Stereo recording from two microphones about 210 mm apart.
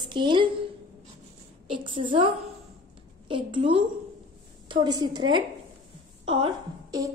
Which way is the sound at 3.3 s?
25° right (ahead or behind).